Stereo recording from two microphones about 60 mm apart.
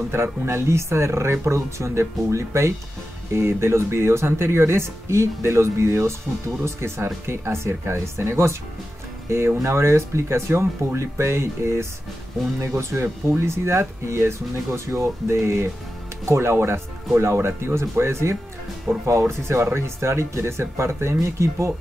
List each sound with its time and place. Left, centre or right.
0.1 s speech: right
9.6 s speech: right